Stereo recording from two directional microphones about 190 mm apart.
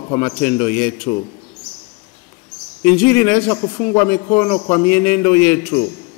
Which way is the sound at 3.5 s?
20° left (ahead or behind).